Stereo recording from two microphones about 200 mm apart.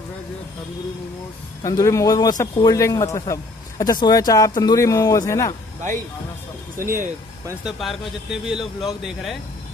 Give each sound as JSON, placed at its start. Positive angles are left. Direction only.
{"t": 1.6, "sound": "a man's voice", "side_deg": 15}
{"t": 6.8, "sound": "speech", "side_deg": -45}
{"t": 7.6, "sound": "speech", "side_deg": 0}